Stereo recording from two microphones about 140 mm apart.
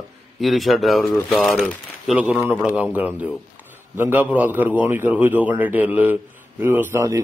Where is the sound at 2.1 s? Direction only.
10° right (ahead or behind).